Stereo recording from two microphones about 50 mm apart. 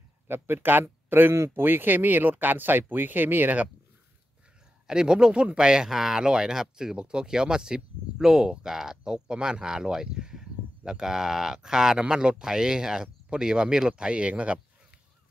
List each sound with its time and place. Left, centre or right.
0.3 s speech: right
4.8 s speech: centre